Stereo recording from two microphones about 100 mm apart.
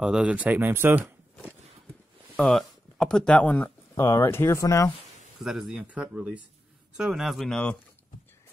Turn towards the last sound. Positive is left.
turn(degrees=0)  # may be behind; listen again after turning